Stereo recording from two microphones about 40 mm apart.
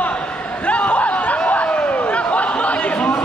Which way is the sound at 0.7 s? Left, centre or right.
Left.